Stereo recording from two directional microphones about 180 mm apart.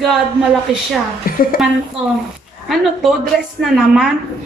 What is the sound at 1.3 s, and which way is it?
Speech, 55° left (ahead or behind).